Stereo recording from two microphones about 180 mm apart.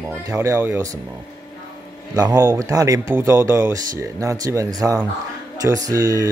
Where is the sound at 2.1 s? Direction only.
20° right (ahead or behind).